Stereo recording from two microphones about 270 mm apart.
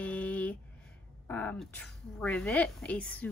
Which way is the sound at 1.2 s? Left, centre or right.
Centre.